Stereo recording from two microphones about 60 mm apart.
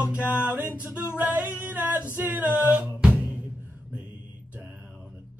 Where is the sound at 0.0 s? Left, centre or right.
Right.